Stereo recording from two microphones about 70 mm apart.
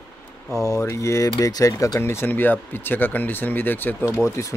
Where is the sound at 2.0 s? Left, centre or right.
Left.